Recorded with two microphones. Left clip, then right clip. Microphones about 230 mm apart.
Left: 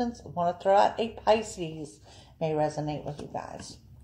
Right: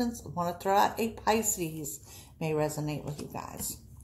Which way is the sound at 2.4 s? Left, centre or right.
Right.